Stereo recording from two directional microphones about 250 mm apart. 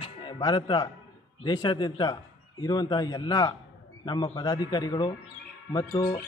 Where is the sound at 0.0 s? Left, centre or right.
Centre.